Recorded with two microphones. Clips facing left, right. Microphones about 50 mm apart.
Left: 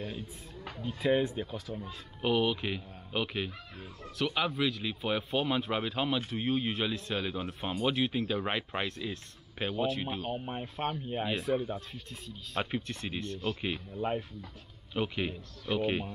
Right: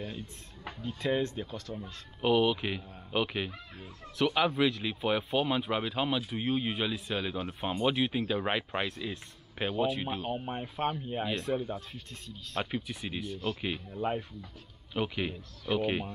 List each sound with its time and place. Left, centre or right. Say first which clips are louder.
0.8 s speech: left 2 dB; centre
1.9 s speech: right 3 dB; centre